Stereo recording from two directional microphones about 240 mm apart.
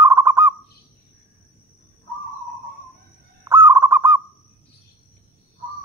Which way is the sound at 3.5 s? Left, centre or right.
Centre.